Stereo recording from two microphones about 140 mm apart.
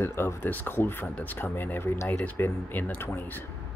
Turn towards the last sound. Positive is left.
turn(degrees=15)  # may be behind; listen again after turning